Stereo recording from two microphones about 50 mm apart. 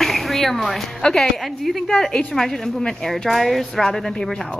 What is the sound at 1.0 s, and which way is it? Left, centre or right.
Speech, centre.